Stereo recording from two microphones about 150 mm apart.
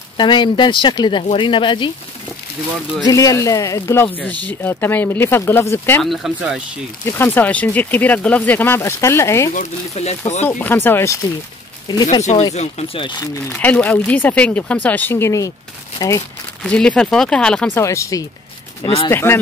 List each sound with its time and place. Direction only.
0.2 s speech: 30° left (ahead or behind)
3.1 s speech: 25° left (ahead or behind)
6.0 s speech: centre (ahead or behind)
7.1 s speech: 15° left (ahead or behind)
9.5 s speech: 50° left (ahead or behind)
10.6 s speech: 15° left (ahead or behind)
12.5 s speech: 40° left (ahead or behind)
13.5 s speech: 10° left (ahead or behind)
16.6 s speech: 5° left (ahead or behind)
17.7 s speech: 20° left (ahead or behind)